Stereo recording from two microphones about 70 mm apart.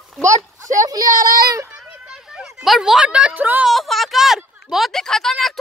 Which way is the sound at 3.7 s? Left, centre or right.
Centre.